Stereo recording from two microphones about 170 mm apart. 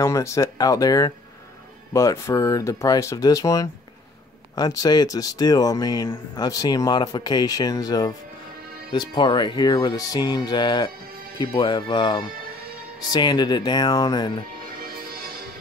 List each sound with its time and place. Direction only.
0.0 s speech: 15° left (ahead or behind)
14.8 s music: 60° right (ahead or behind)